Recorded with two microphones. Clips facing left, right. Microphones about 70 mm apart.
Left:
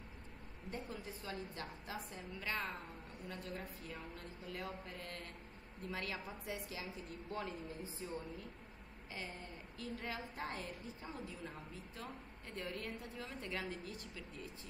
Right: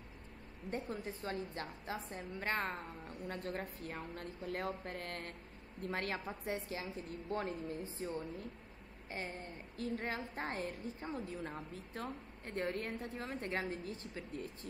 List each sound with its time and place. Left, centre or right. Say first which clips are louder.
0.7 s a woman's voice: right 5 dB; right
9.1 s a woman's voice: right 4 dB; right